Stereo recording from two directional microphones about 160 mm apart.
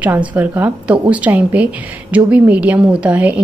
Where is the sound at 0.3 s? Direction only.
10° right (ahead or behind).